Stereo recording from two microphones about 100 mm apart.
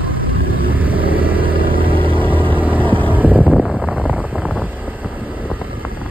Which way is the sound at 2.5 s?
15° right (ahead or behind).